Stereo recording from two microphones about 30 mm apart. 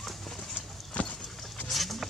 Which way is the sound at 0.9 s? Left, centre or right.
Left.